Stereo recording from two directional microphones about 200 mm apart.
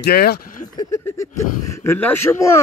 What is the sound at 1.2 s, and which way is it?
Speech, 15° left (ahead or behind).